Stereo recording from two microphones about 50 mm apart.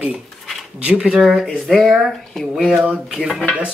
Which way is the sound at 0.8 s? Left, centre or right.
Right.